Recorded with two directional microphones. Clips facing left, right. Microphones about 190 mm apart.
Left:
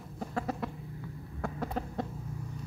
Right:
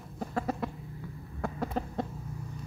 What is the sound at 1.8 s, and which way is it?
Chicken, 30° right (ahead or behind).